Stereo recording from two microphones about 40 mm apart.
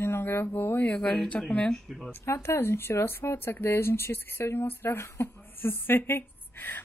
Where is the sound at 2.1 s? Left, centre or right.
Left.